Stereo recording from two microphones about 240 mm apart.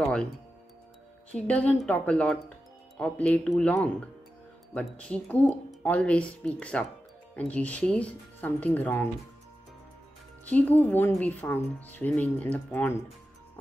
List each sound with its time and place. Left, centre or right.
1.5 s speech: centre
10.4 s speech: centre